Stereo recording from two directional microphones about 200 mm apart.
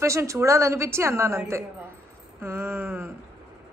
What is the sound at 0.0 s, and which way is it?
A woman's voice, 15° right (ahead or behind).